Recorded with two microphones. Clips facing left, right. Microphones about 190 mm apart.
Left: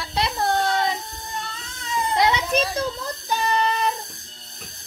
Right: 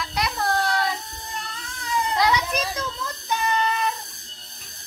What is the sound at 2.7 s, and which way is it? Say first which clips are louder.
Child singing: left 4 dB; 35° left (ahead or behind).